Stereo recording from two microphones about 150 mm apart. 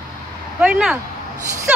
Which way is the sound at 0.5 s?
5° right (ahead or behind).